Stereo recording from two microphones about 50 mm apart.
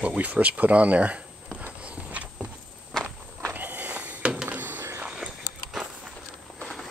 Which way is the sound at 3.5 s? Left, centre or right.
Right.